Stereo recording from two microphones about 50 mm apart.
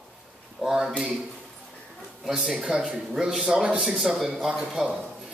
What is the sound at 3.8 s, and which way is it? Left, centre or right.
Speech, centre.